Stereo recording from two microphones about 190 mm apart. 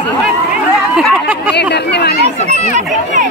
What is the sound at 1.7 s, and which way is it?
Speech, 60° left (ahead or behind).